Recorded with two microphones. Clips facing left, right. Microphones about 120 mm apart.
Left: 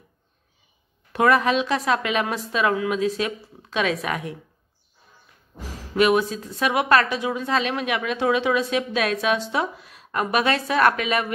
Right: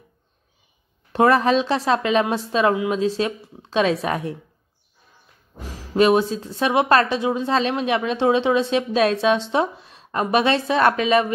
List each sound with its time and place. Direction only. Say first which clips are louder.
1.1 s a woman's voice: right 3 dB; 30° right (ahead or behind)
5.9 s a woman's voice: right 3 dB; 30° right (ahead or behind)